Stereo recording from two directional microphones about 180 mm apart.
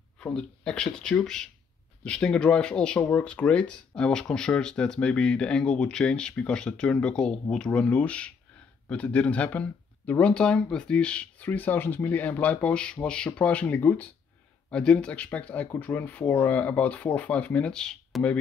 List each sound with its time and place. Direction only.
0.2 s speech: 5° left (ahead or behind)